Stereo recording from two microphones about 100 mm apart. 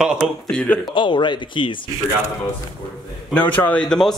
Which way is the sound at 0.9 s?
50° left (ahead or behind).